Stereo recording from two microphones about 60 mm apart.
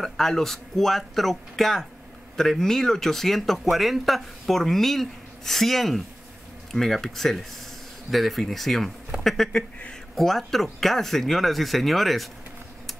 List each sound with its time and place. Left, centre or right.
0.0 s speech: centre
9.5 s speech: centre
10.1 s speech: centre